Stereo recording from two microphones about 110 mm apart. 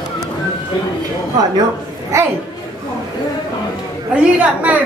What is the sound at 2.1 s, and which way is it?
Speech, 25° right (ahead or behind).